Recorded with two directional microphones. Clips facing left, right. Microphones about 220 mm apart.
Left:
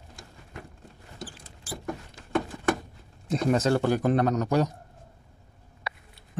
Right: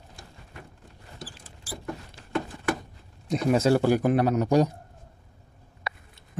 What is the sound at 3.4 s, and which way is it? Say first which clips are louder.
Speech: right 2 dB; 10° right (ahead or behind).